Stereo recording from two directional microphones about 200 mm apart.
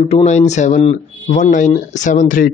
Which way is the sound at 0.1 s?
35° left (ahead or behind).